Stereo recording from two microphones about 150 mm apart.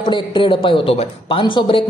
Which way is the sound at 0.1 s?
35° left (ahead or behind).